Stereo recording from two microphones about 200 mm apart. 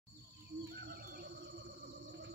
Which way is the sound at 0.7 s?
50° right (ahead or behind).